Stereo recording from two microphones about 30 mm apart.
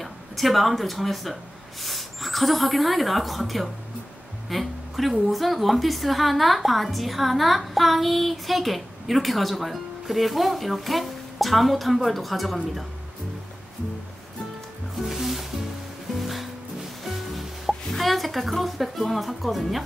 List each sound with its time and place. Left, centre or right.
0.0 s speech: centre
4.5 s music: centre
5.3 s a woman's voice: centre
15.0 s music: centre
17.8 s a woman's voice: centre